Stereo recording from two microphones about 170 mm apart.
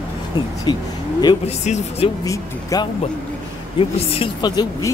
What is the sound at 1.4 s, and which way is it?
Speech, 40° left (ahead or behind).